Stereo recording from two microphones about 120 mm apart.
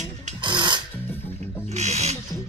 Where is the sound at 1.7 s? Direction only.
70° right (ahead or behind).